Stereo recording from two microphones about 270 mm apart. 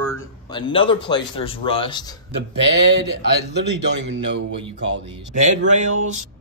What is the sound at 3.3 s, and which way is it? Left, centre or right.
A man's voice, right.